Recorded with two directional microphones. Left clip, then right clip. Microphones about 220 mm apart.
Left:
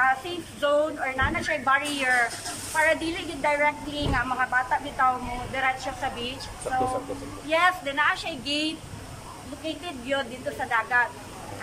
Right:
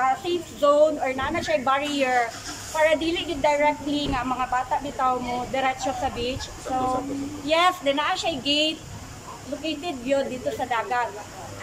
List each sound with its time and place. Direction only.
0.0 s a woman's voice: 15° right (ahead or behind)
7.4 s a woman's voice: 15° right (ahead or behind)